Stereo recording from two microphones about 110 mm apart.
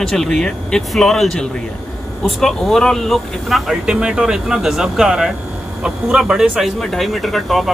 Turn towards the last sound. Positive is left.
turn(degrees=0)  # may be behind; listen again after turning